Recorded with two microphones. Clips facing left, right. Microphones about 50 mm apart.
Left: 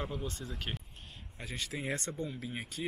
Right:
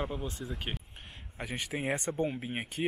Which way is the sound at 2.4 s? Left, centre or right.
Right.